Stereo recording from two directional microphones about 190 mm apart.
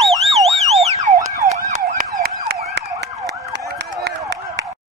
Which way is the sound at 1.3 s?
45° right (ahead or behind).